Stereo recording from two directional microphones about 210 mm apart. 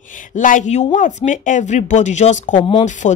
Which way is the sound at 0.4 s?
35° left (ahead or behind).